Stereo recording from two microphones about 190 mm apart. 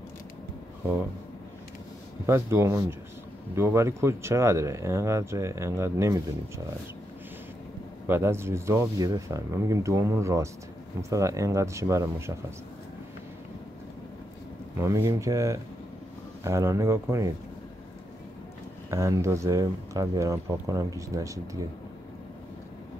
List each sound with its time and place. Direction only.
2.2 s speech: 15° right (ahead or behind)
8.1 s speech: 15° right (ahead or behind)
14.8 s speech: 15° right (ahead or behind)
18.9 s speech: 15° right (ahead or behind)